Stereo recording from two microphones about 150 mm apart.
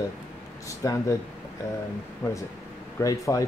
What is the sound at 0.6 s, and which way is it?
Speech, 20° left (ahead or behind).